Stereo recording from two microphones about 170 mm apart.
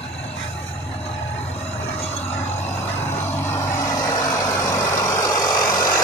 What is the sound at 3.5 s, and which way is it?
Vehicle, 20° left (ahead or behind).